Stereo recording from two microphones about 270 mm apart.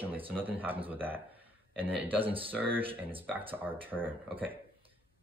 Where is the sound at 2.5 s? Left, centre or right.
Centre.